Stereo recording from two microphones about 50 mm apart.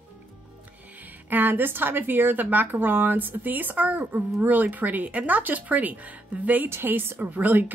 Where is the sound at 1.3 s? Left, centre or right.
Right.